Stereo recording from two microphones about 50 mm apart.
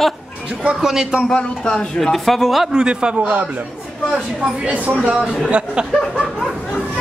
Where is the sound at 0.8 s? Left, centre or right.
Centre.